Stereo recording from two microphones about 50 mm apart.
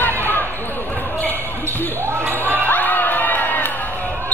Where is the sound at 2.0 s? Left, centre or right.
Right.